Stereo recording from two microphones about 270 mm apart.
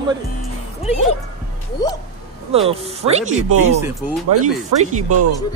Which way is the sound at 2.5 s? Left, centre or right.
Right.